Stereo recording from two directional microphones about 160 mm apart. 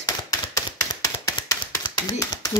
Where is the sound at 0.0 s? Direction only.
25° left (ahead or behind).